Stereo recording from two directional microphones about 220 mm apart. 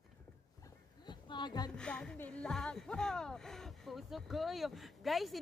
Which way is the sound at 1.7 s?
5° left (ahead or behind).